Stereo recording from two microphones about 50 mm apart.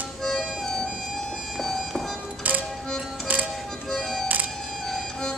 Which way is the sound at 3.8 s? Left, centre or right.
Centre.